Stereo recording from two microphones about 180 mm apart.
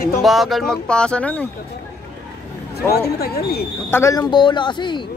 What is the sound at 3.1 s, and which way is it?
Speech, 60° left (ahead or behind).